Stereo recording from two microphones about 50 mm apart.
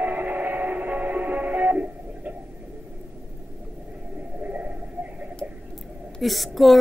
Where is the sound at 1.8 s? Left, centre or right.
Right.